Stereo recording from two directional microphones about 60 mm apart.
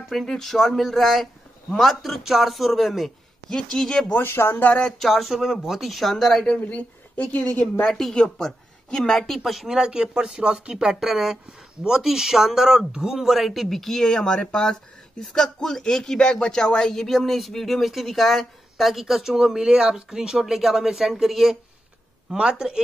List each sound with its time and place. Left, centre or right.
0.1 s speech: centre
4.1 s speech: left
4.9 s speech: centre
6.4 s a woman's voice: left
7.8 s speech: centre